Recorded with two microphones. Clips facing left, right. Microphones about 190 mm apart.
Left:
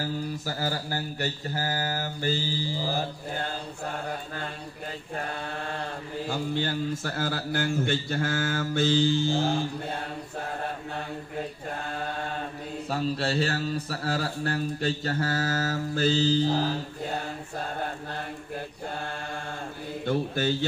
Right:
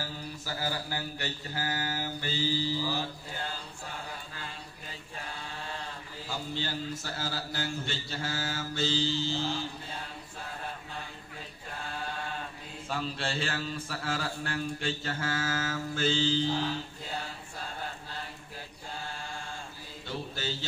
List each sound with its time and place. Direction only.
0.6 s mantra: 45° left (ahead or behind)
5.1 s speech: 55° left (ahead or behind)
12.9 s a man's voice: 40° left (ahead or behind)
20.1 s mantra: 55° left (ahead or behind)